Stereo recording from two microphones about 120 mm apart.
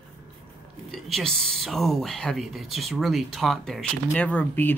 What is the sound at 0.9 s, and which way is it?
Speech, centre (ahead or behind).